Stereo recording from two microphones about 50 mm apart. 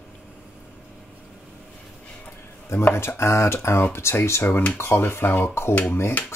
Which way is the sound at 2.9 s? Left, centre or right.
Left.